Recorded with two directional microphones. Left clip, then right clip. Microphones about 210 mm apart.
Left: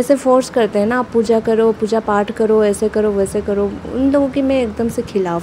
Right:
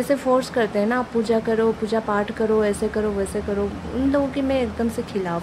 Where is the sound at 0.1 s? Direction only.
20° left (ahead or behind).